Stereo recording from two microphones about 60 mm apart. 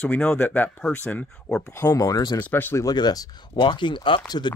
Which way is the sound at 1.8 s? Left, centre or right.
Left.